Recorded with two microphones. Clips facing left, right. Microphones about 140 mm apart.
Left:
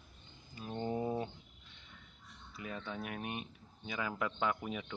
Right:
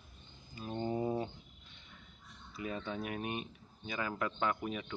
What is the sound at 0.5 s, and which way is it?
Speech, centre (ahead or behind).